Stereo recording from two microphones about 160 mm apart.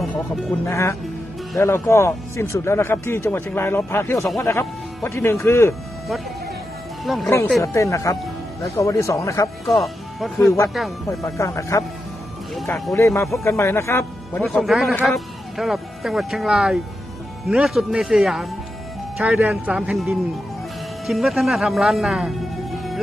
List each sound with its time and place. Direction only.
0.0 s speech: centre (ahead or behind)
0.7 s speech: 15° left (ahead or behind)
7.1 s speech: centre (ahead or behind)
7.6 s speech: 20° left (ahead or behind)
9.7 s speech: centre (ahead or behind)
11.1 s speech: 20° left (ahead or behind)
12.9 s speech: 20° left (ahead or behind)
14.4 s speech: centre (ahead or behind)